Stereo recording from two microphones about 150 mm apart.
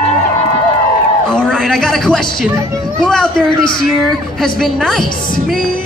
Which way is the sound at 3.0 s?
5° left (ahead or behind).